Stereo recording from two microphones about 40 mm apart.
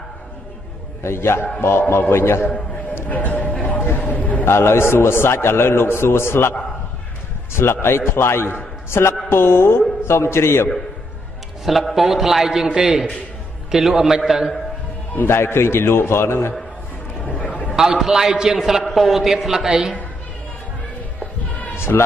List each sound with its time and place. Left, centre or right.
1.0 s a man's voice: left
3.1 s a sound: left
4.0 s a man's voice: left
4.5 s a man's voice: left
7.5 s a man's voice: left
11.6 s a man's voice: centre
15.2 s a man's voice: left
17.3 s a sound: left
17.9 s a man's voice: centre
18.9 s a man's voice: centre
21.7 s music: left